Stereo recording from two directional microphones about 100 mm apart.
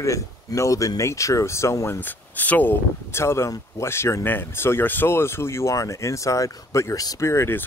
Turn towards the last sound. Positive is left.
turn(degrees=25)  # may be behind; listen again after turning